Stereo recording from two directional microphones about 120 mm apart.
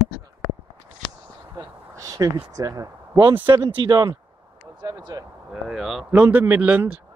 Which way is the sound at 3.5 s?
40° right (ahead or behind).